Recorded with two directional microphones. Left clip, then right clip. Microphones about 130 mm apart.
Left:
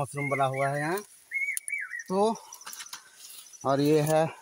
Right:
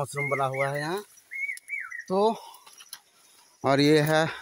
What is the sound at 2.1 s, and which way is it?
Speech, 45° right (ahead or behind).